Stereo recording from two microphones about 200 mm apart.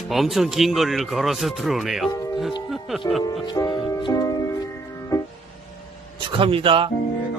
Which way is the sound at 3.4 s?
20° left (ahead or behind).